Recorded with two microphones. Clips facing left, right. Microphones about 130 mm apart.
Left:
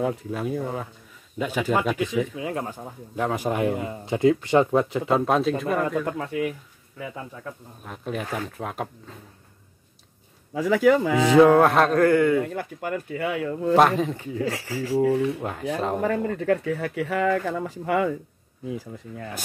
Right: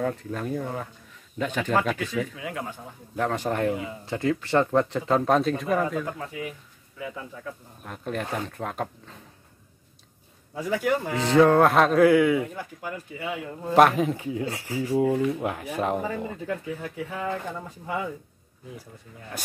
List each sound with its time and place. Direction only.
0.0 s speech: 10° left (ahead or behind)
2.4 s speech: 35° left (ahead or behind)
3.2 s speech: 10° left (ahead or behind)
3.7 s speech: 45° left (ahead or behind)
4.0 s speech: 20° left (ahead or behind); by 6.0 s centre (ahead or behind)
6.0 s speech: 60° left (ahead or behind)
7.8 s speech: centre (ahead or behind)
10.5 s speech: 90° left
11.3 s speech: 5° left (ahead or behind)
12.5 s speech: 60° left (ahead or behind)
13.7 s speech: 5° right (ahead or behind)
14.4 s speech: 90° left
15.1 s speech: centre (ahead or behind)
16.3 s speech: 75° left (ahead or behind)